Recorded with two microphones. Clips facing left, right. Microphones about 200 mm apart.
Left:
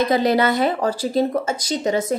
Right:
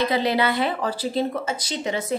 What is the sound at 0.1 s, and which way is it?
A woman's voice, 45° left (ahead or behind).